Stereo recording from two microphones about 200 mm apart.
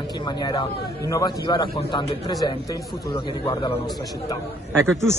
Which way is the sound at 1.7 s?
30° left (ahead or behind).